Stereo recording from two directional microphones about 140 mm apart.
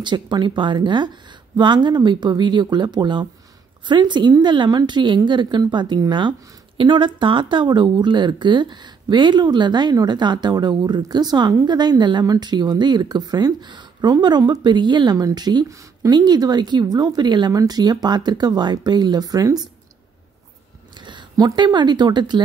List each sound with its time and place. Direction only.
0.0 s speech: 35° right (ahead or behind)
21.0 s speech: 30° right (ahead or behind)